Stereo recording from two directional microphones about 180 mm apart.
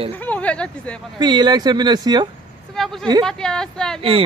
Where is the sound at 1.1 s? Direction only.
25° right (ahead or behind).